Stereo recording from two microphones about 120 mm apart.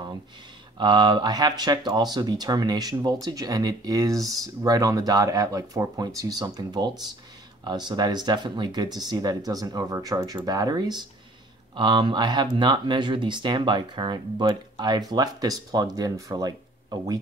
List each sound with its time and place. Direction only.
0.7 s speech: 40° right (ahead or behind)